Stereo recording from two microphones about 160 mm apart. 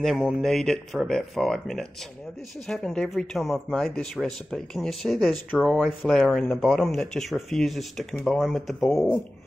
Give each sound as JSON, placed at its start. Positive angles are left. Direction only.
{"t": 0.3, "sound": "speech", "side_deg": 0}